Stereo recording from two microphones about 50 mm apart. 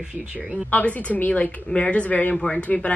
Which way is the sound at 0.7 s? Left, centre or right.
Left.